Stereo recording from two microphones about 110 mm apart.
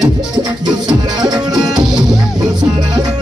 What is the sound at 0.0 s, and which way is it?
Music, 40° right (ahead or behind).